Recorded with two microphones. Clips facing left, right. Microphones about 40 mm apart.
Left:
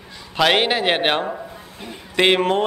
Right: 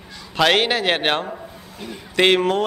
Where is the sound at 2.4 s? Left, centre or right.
Left.